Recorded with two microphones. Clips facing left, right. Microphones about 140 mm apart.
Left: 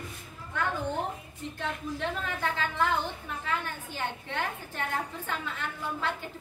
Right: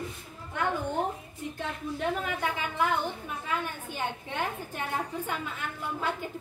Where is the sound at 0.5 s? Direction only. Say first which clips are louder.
Right 1 dB; 15° right (ahead or behind).